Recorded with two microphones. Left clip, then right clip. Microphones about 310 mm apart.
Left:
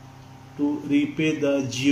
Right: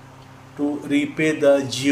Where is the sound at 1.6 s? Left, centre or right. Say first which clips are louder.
Right 3 dB; centre.